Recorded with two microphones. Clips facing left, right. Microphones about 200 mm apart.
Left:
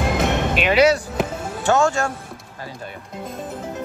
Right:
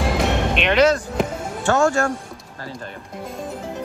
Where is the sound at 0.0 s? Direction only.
Centre (ahead or behind).